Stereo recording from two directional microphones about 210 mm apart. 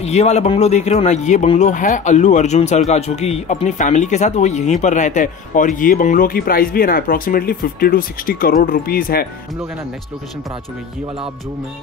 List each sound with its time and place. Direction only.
0.0 s speech: 30° left (ahead or behind)